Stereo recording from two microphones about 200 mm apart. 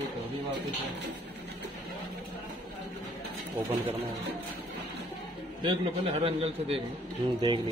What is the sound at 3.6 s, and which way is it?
Speech, 10° right (ahead or behind).